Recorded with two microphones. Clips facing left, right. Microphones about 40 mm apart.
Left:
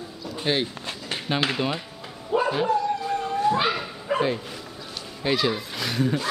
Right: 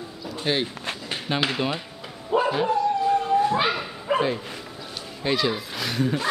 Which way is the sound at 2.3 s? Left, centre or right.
Centre.